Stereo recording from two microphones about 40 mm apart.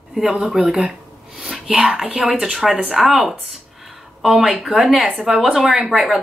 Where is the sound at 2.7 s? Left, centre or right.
Right.